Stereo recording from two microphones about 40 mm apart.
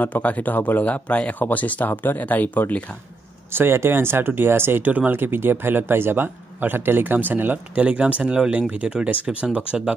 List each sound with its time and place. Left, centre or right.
0.0 s speech: left
3.5 s speech: right
4.8 s speech: right
5.1 s speech: right
7.7 s speech: right
8.8 s speech: right
9.1 s speech: right